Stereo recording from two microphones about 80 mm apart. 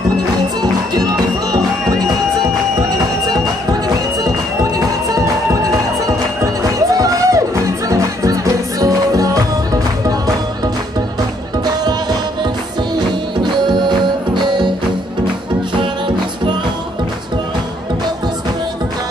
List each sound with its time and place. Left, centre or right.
0.6 s music: right
4.2 s music: right
11.6 s music: right
12.9 s music: right